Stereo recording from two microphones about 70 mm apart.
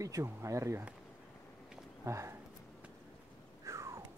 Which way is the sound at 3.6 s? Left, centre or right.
Right.